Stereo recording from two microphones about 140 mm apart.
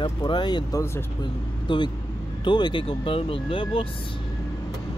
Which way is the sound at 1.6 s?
35° left (ahead or behind).